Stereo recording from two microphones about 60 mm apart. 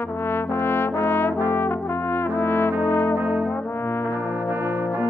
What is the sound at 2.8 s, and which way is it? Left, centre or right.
Brass instrument, left.